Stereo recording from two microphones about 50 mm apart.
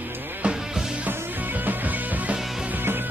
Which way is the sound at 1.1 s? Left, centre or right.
Right.